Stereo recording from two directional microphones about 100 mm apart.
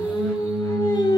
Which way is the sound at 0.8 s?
45° left (ahead or behind).